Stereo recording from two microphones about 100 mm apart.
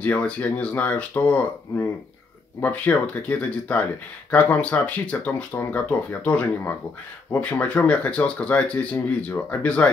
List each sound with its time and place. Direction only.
0.0 s speech: 15° left (ahead or behind)
2.6 s speech: 15° left (ahead or behind)